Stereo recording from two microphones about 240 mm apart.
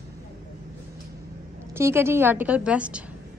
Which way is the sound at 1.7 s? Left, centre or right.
Centre.